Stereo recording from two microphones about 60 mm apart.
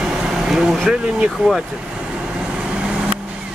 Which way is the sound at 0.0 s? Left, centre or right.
Centre.